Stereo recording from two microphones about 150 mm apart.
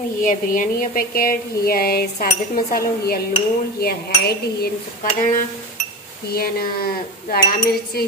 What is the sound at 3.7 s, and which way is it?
Dishes, 90° left.